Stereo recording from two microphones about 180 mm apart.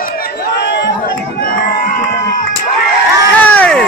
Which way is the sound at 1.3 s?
50° left (ahead or behind).